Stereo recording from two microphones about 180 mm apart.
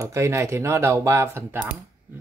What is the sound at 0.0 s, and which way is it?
Speech, 15° right (ahead or behind).